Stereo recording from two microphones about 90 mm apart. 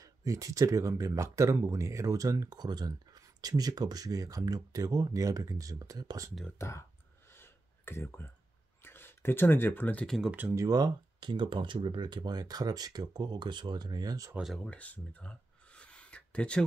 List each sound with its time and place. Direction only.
0.0 s speech: 40° right (ahead or behind)
6.6 s speech: 30° left (ahead or behind)
7.3 s a sound: 25° left (ahead or behind)
8.8 s speech: 25° left (ahead or behind)
10.0 s speech: centre (ahead or behind)
10.5 s speech: 40° right (ahead or behind)
14.4 s speech: centre (ahead or behind)
14.7 s a sound: 15° left (ahead or behind)